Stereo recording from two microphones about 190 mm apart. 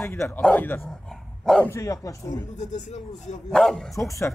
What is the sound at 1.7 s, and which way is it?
Speech, 15° left (ahead or behind).